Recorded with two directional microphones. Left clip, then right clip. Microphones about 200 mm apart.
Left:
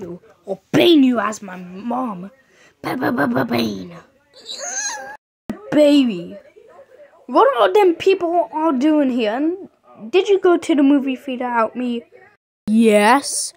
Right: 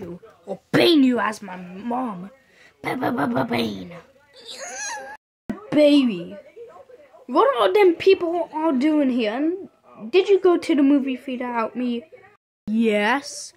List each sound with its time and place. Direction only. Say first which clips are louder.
0.5 s a woman's voice: left 4 dB; 5° left (ahead or behind)
2.8 s a sound: left 4 dB; 10° left (ahead or behind)
5.8 s a woman's voice: left 3 dB; 15° left (ahead or behind)
12.7 s speech: left 7 dB; 25° left (ahead or behind)